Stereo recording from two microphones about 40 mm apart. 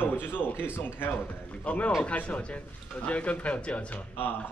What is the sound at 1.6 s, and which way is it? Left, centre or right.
A man's voice, left.